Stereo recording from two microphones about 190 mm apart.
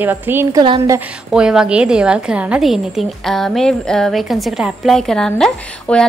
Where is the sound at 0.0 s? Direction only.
10° right (ahead or behind).